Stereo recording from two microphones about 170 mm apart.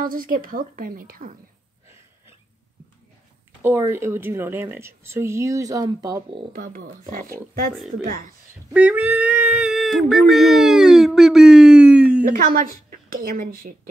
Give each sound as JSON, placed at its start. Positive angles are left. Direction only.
{"t": 0.0, "sound": "a woman's voice", "side_deg": -55}
{"t": 3.6, "sound": "speech", "side_deg": -15}
{"t": 6.5, "sound": "a woman's voice", "side_deg": -55}
{"t": 8.7, "sound": "speech", "side_deg": -10}
{"t": 12.2, "sound": "a woman's voice", "side_deg": -50}